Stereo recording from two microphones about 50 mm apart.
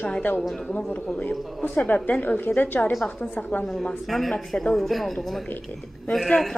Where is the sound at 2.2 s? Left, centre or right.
Left.